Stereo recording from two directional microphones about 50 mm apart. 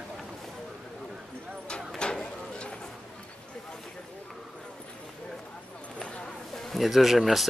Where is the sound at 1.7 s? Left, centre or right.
Centre.